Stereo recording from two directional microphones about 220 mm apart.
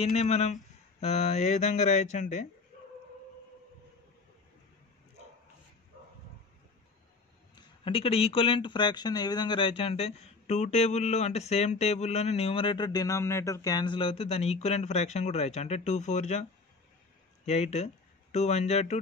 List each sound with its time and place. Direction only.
0.0 s speech: 30° left (ahead or behind)
7.5 s speech: 25° left (ahead or behind)
17.5 s speech: 30° left (ahead or behind)